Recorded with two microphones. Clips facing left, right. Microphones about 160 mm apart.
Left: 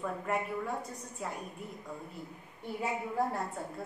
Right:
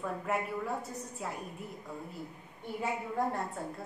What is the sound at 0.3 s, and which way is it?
A woman's voice, centre (ahead or behind).